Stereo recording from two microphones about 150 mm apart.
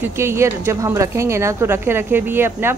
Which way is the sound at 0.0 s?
15° right (ahead or behind).